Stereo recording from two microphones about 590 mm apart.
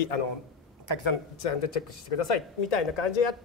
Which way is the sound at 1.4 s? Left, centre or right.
Left.